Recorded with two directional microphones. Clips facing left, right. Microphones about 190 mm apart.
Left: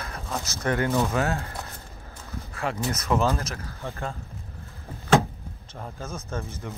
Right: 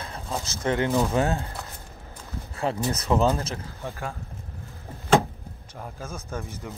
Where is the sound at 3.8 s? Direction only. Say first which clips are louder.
Left 3 dB; 10° right (ahead or behind).